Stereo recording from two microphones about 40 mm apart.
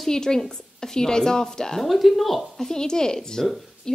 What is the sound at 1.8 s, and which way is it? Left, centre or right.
Speech, centre.